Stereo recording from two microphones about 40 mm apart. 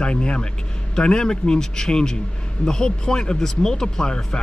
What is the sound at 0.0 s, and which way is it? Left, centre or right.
Speech, left.